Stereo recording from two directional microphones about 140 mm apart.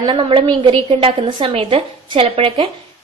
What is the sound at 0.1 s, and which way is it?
A woman's voice, 40° right (ahead or behind).